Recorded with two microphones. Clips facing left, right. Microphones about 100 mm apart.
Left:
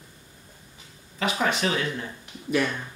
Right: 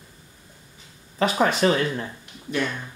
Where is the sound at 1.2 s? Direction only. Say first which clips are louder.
Right 5 dB; 40° right (ahead or behind).